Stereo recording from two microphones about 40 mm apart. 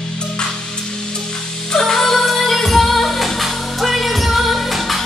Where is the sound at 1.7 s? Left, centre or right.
Centre.